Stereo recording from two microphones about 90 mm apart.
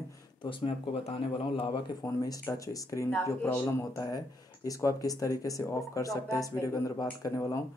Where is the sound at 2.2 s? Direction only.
40° left (ahead or behind).